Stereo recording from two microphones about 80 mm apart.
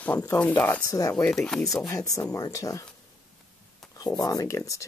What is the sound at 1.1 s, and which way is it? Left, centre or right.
Speech, centre.